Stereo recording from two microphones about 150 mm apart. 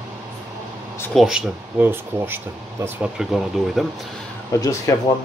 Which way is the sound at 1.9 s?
15° right (ahead or behind).